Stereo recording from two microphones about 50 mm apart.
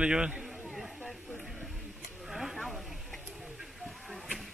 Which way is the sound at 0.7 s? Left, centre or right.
Centre.